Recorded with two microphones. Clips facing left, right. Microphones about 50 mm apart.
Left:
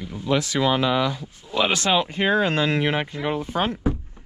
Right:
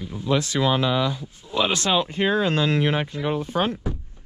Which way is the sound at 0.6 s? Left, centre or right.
Left.